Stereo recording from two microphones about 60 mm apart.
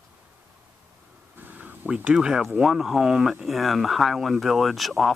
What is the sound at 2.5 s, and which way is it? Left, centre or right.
Speech, centre.